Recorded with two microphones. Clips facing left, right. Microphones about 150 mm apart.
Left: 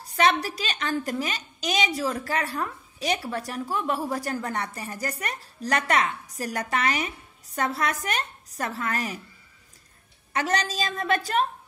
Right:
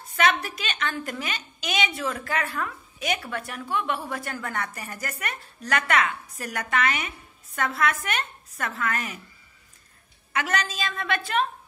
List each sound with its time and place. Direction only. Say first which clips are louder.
0.0 s a woman's voice: left 1 dB; 35° left (ahead or behind)
10.3 s a woman's voice: left 2 dB; 35° left (ahead or behind)